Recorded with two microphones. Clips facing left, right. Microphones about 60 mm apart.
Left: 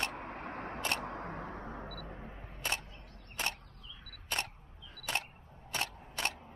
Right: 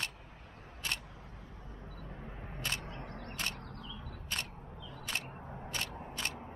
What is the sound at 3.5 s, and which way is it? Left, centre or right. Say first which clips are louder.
Single-lens reflex camera: right 7 dB; right.